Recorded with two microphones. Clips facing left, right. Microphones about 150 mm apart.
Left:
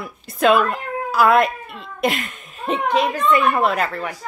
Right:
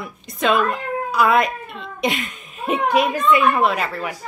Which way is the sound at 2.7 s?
10° right (ahead or behind).